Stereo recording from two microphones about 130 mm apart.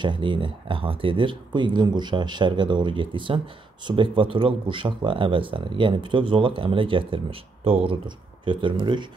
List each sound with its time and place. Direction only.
0.0 s speech: 40° right (ahead or behind)